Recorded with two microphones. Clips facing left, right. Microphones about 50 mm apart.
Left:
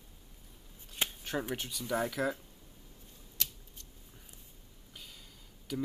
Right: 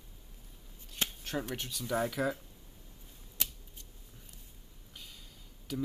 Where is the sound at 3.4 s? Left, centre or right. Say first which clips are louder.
Right 1 dB; right.